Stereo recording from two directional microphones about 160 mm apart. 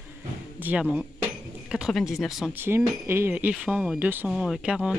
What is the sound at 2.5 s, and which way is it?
Speech, 15° right (ahead or behind).